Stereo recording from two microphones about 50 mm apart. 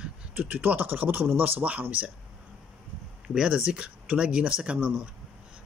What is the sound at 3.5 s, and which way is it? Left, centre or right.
Speech, right.